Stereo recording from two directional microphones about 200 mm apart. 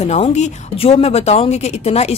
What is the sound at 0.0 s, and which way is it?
A woman's voice, 35° left (ahead or behind).